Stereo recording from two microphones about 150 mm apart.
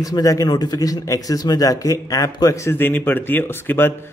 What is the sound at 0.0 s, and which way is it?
Speech, 25° left (ahead or behind).